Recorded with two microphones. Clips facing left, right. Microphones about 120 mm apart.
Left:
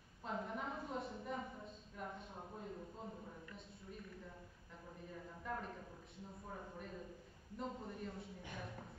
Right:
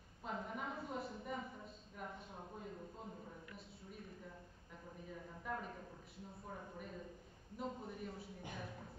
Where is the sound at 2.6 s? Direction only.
Centre (ahead or behind).